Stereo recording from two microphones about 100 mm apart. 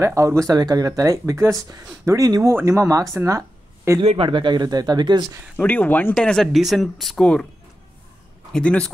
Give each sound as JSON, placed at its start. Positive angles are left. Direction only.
{"t": 0.0, "sound": "speech", "side_deg": -30}
{"t": 3.3, "sound": "a sound", "side_deg": -30}
{"t": 4.0, "sound": "speech", "side_deg": -75}
{"t": 5.6, "sound": "speech", "side_deg": 15}
{"t": 6.1, "sound": "speech", "side_deg": 5}
{"t": 8.5, "sound": "speech", "side_deg": 10}